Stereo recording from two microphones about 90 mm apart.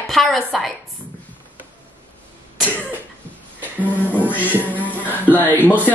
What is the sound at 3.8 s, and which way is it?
Music, 20° left (ahead or behind).